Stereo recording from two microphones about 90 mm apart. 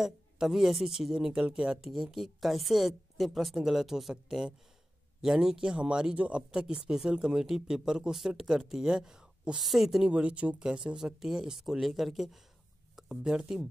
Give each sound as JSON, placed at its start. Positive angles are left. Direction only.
{"t": 0.0, "sound": "a woman's voice", "side_deg": -5}